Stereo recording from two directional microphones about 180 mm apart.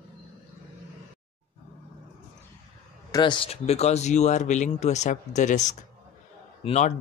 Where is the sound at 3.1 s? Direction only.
25° left (ahead or behind).